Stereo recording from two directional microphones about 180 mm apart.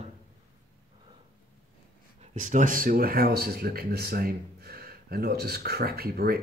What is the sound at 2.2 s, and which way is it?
Speech, 45° right (ahead or behind).